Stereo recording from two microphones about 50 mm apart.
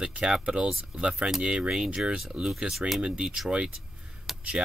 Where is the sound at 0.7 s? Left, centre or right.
Centre.